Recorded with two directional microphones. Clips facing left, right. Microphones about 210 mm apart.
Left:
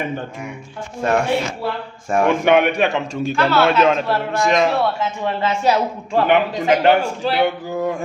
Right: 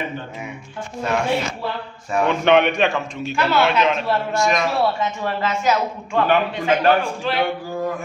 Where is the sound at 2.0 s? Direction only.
50° left (ahead or behind).